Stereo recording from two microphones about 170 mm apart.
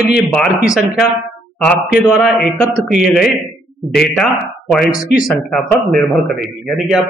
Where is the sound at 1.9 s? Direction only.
Centre (ahead or behind).